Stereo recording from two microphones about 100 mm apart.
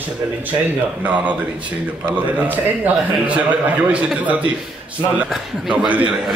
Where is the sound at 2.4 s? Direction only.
15° right (ahead or behind).